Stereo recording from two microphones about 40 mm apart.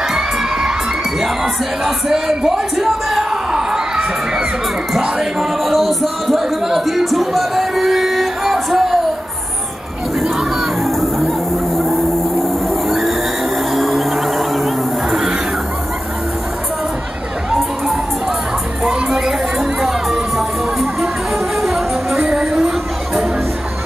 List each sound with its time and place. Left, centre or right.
0.1 s children shouting: centre
1.2 s speech: centre
5.6 s speech: centre
8.7 s a sound: centre
10.8 s a sound: centre
13.7 s music: centre
18.9 s crowd: centre
21.5 s music: centre
22.3 s a sound: centre